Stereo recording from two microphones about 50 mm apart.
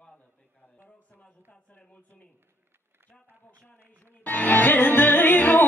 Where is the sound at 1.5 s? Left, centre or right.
Left.